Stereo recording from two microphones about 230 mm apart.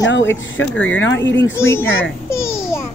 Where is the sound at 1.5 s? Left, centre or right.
Centre.